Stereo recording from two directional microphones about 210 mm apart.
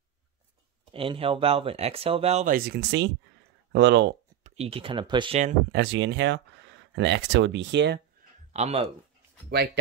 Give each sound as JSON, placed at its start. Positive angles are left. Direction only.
{"t": 0.9, "sound": "speech", "side_deg": -25}
{"t": 4.4, "sound": "speech", "side_deg": -30}
{"t": 5.7, "sound": "speech", "side_deg": -55}
{"t": 8.5, "sound": "speech", "side_deg": -30}